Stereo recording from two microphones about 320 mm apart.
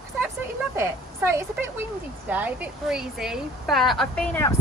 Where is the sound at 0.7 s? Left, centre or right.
Centre.